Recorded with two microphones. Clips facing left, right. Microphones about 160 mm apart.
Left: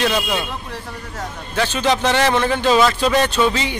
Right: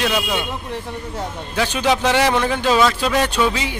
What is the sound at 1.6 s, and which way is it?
A man's voice, 10° right (ahead or behind).